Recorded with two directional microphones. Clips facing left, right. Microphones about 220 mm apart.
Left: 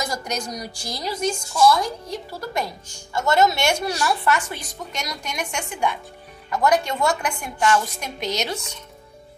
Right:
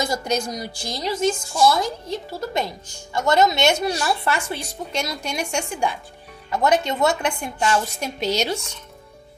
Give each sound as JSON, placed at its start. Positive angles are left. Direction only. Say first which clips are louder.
{"t": 0.1, "sound": "speech", "louder": "right 5 dB", "side_deg": -25}